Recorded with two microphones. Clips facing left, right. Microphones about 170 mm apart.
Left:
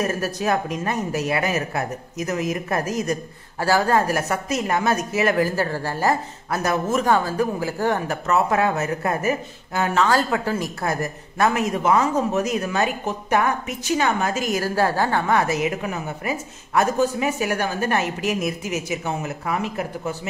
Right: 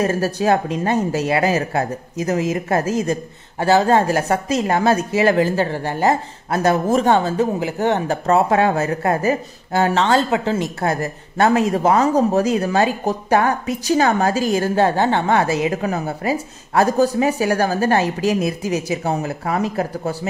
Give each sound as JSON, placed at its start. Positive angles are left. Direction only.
{"t": 0.0, "sound": "a woman's voice", "side_deg": -30}